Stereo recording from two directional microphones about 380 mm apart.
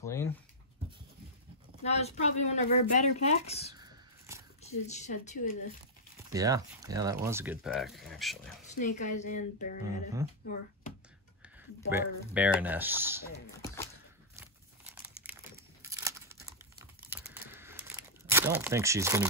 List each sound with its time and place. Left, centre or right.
0.0 s speech: centre
1.8 s speech: centre
3.7 s a sound: centre
4.6 s speech: centre
6.3 s speech: centre
8.7 s a woman's voice: centre
11.4 s speech: centre
15.8 s crumpling: centre